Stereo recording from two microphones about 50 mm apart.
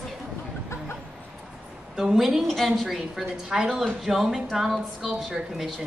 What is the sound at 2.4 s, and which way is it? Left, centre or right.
A woman's voice, centre.